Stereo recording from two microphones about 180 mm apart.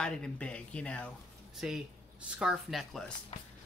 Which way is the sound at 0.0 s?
5° left (ahead or behind).